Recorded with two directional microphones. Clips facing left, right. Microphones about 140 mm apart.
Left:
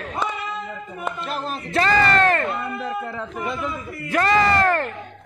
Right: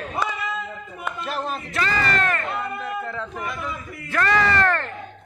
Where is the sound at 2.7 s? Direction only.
20° left (ahead or behind).